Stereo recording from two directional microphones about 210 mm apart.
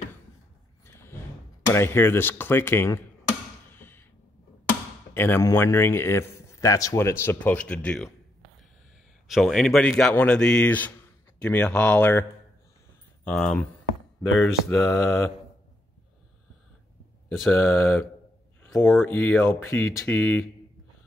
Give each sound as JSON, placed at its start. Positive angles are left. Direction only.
{"t": 0.8, "sound": "a sound", "side_deg": 10}
{"t": 5.1, "sound": "speech", "side_deg": 10}
{"t": 9.3, "sound": "a man's voice", "side_deg": 0}
{"t": 14.8, "sound": "speech", "side_deg": 10}
{"t": 17.5, "sound": "speech", "side_deg": 10}